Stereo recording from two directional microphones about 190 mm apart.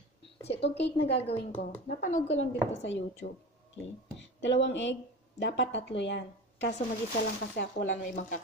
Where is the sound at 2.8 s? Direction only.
75° left (ahead or behind).